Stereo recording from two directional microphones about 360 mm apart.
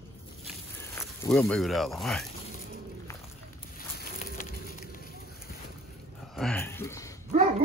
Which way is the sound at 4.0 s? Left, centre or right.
Left.